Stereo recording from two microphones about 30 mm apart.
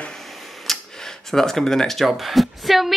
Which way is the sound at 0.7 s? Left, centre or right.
Centre.